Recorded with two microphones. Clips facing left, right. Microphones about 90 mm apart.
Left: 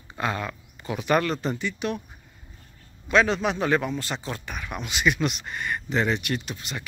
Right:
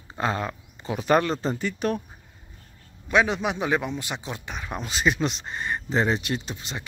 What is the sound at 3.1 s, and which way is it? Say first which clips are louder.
A man's voice: left 1 dB; 15° right (ahead or behind).